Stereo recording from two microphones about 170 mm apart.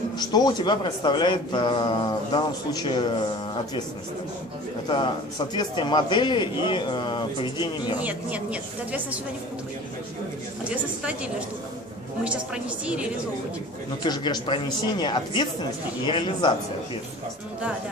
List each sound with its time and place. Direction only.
0.2 s a man's voice: 25° left (ahead or behind)
4.8 s a man's voice: 25° left (ahead or behind)
8.0 s a woman's voice: 10° right (ahead or behind)
10.7 s a woman's voice: 5° right (ahead or behind)
14.0 s a man's voice: 25° left (ahead or behind)